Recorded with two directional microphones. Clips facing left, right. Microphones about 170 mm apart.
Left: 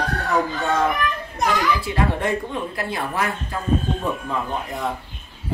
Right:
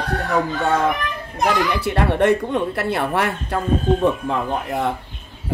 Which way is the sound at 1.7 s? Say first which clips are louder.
Right 2 dB; 65° right (ahead or behind).